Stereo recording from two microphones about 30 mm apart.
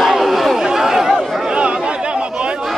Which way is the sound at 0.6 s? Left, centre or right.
Centre.